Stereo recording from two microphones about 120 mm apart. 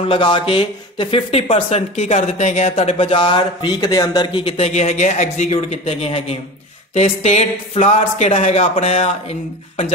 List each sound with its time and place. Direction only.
0.1 s a man's voice: 45° left (ahead or behind); by 3.1 s 70° left (ahead or behind)
3.1 s a man's voice: 45° left (ahead or behind); by 9.1 s 60° left (ahead or behind)